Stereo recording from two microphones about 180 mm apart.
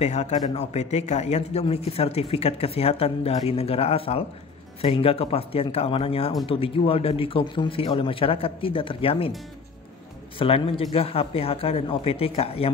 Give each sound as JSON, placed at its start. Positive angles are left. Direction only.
{"t": 0.0, "sound": "speech", "side_deg": 40}
{"t": 10.4, "sound": "speech", "side_deg": 30}